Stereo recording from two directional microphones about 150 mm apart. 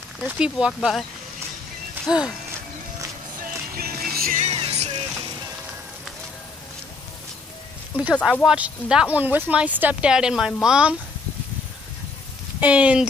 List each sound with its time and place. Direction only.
0.2 s speech: 5° right (ahead or behind)
2.0 s speech: 5° right (ahead or behind)
3.7 s music: 85° right
4.4 s music: 45° right (ahead or behind)
8.1 s speech: 5° left (ahead or behind)
8.5 s speech: 5° right (ahead or behind)
12.5 s speech: 10° right (ahead or behind)